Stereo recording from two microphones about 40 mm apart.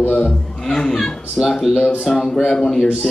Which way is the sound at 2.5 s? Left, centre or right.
Centre.